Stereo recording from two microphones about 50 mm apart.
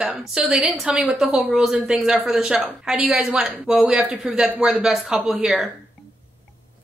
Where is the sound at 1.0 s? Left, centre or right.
Centre.